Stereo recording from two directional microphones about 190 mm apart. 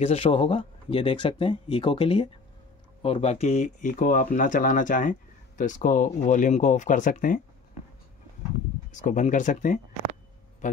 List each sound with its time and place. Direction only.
0.0 s speech: 30° left (ahead or behind)
8.9 s speech: 40° left (ahead or behind)
10.6 s a sound: 40° left (ahead or behind)